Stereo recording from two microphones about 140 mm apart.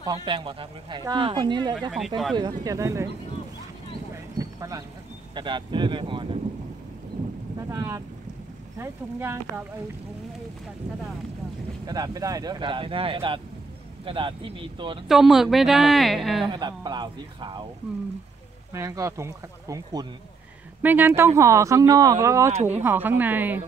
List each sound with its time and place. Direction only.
0.0 s speech: 30° right (ahead or behind)
1.8 s speech: centre (ahead or behind)
2.3 s speech: 30° right (ahead or behind)
4.4 s a sound: 25° right (ahead or behind)
5.3 s speech: 35° right (ahead or behind)
7.6 s speech: 20° right (ahead or behind)
11.8 s speech: 25° right (ahead or behind)
15.0 s speech: 5° right (ahead or behind)
16.4 s speech: 30° right (ahead or behind)
18.7 s speech: 20° right (ahead or behind)
20.8 s speech: 15° right (ahead or behind)